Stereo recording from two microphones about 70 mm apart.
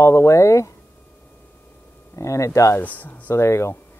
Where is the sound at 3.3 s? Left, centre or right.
Left.